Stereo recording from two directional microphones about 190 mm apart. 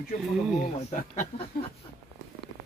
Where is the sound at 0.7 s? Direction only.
35° left (ahead or behind).